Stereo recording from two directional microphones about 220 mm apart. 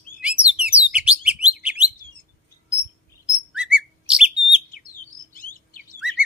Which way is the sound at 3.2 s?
5° right (ahead or behind).